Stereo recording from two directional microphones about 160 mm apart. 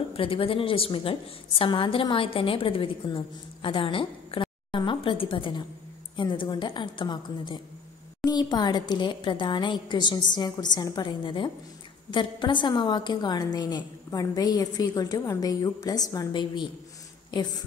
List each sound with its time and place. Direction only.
0.1 s a woman's voice: 35° left (ahead or behind)